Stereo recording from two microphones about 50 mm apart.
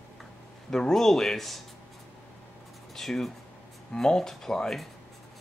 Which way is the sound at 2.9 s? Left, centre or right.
Centre.